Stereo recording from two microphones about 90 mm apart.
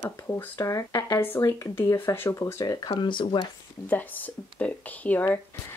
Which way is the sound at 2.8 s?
60° left (ahead or behind).